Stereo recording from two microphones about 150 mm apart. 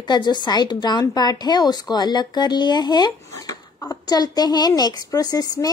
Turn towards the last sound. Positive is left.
turn(degrees=25)  # may be behind; listen again after turning